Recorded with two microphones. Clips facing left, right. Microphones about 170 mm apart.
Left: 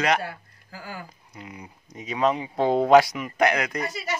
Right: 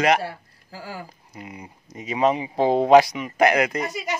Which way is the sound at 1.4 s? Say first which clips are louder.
Right 2 dB; 5° right (ahead or behind).